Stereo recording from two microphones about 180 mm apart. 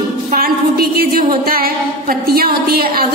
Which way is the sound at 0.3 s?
55° right (ahead or behind).